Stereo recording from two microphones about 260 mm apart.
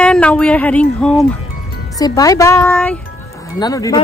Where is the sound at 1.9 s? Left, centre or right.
Centre.